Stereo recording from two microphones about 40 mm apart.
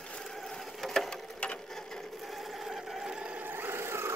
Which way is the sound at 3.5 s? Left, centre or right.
Right.